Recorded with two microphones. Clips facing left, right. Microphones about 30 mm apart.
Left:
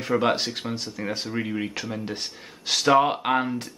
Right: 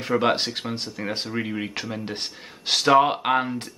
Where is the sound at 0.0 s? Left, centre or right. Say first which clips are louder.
Right 1 dB; centre.